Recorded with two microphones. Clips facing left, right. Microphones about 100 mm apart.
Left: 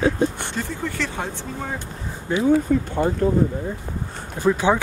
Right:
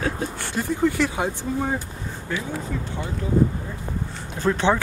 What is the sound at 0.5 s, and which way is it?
Speech, 10° right (ahead or behind).